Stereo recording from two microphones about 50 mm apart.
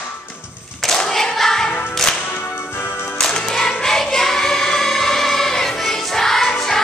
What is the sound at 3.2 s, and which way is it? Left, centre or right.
Music, centre.